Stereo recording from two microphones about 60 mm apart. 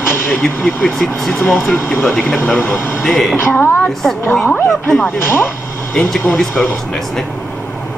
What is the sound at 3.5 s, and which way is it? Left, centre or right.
Speech, left.